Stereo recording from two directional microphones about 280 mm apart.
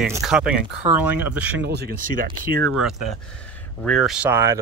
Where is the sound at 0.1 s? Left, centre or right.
Centre.